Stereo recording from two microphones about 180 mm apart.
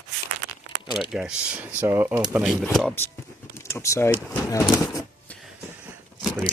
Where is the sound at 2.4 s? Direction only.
Centre (ahead or behind).